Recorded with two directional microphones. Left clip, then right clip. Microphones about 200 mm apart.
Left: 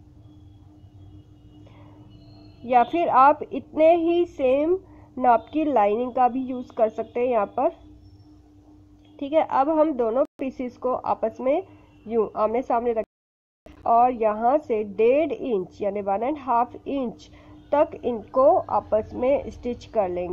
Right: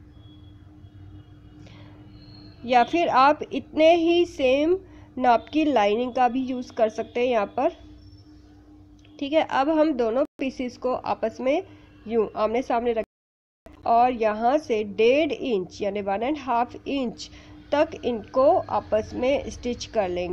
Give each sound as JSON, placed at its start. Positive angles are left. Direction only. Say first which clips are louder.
{"t": 2.6, "sound": "a woman's voice", "louder": "even", "side_deg": -15}
{"t": 9.1, "sound": "a woman's voice", "louder": "left 1 dB", "side_deg": -10}